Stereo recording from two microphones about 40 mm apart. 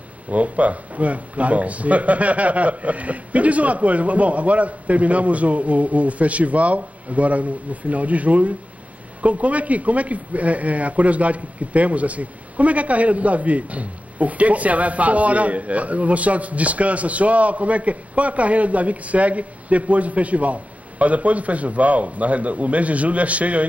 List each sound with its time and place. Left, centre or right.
0.3 s speech: right